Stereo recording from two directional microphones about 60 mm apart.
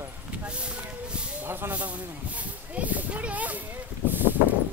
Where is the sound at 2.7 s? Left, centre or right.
Right.